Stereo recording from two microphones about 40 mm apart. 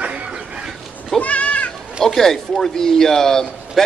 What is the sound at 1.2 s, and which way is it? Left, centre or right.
Cat, left.